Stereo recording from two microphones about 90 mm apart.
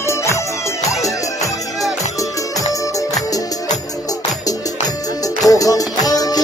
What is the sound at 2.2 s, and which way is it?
Music, 40° left (ahead or behind).